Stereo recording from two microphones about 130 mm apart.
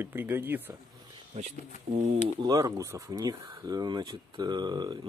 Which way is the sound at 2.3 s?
30° right (ahead or behind).